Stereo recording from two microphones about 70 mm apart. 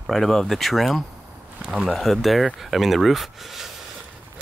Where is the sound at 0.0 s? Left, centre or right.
Centre.